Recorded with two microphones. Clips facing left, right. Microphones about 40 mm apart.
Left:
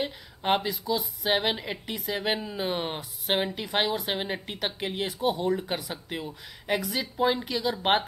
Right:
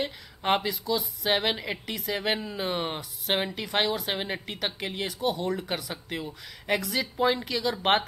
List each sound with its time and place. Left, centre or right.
0.0 s a woman's voice: centre
2.1 s a woman's voice: centre
5.0 s speech: centre
5.4 s a woman's voice: centre